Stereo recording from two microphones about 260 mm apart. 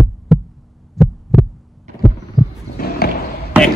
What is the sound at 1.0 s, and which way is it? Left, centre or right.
Heart sounds, centre.